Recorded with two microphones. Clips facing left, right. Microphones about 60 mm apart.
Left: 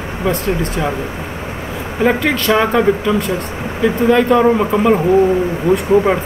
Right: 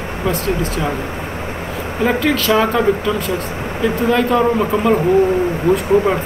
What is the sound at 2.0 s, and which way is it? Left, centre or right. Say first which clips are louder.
Speech: left 2 dB; centre.